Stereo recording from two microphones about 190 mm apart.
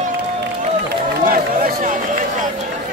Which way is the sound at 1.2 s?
45° right (ahead or behind).